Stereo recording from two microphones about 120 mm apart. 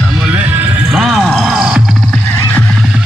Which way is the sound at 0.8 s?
5° right (ahead or behind).